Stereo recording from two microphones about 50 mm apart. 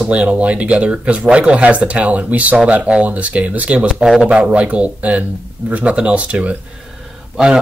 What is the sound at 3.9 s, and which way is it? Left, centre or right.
Speech, centre.